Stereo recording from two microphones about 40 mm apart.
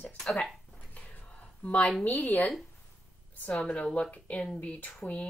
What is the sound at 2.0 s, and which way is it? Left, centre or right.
Speech, left.